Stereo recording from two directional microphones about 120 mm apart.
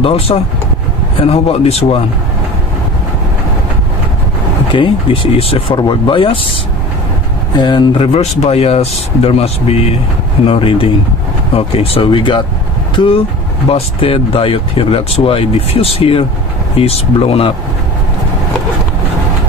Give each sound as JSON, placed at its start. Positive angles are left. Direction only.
{"t": 0.0, "sound": "speech", "side_deg": 50}
{"t": 4.7, "sound": "speech", "side_deg": 45}
{"t": 5.8, "sound": "speech", "side_deg": 40}
{"t": 7.5, "sound": "speech", "side_deg": 40}